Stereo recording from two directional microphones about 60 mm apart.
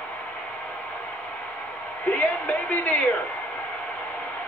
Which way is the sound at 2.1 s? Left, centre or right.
Left.